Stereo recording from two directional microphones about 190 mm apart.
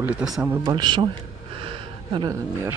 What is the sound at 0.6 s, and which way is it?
Speech, 25° right (ahead or behind).